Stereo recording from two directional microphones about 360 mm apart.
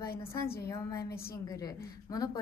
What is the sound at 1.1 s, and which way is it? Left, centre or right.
Speech, left.